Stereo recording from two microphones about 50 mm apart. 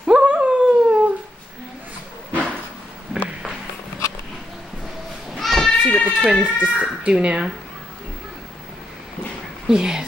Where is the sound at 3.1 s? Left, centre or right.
Right.